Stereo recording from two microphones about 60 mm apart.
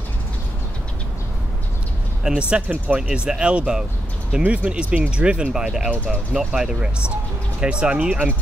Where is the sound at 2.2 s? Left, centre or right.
Centre.